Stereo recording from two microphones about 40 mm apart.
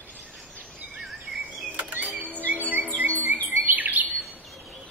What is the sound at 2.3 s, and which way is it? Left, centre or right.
Cricket, right.